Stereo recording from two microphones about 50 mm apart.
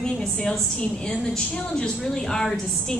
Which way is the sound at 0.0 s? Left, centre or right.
Centre.